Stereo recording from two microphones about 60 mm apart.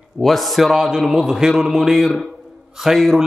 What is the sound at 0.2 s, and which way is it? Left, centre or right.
A man's voice, centre.